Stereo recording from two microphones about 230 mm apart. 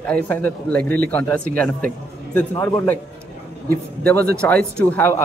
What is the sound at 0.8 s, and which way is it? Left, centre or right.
Speech, right.